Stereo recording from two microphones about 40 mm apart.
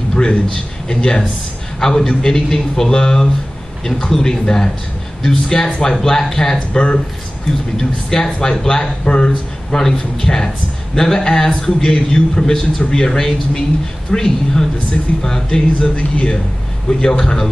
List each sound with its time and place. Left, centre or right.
0.1 s a sound: centre
0.8 s a man's voice: left
6.7 s speech: left
8.1 s a man's voice: centre
9.8 s a man's voice: centre